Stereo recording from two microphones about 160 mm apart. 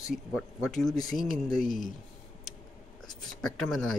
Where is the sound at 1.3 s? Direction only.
55° left (ahead or behind).